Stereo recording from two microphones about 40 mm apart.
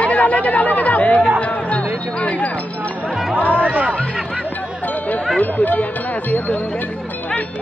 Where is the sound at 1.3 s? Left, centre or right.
Left.